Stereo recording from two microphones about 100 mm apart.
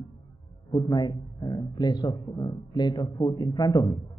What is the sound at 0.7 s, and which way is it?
A man's voice, 40° left (ahead or behind).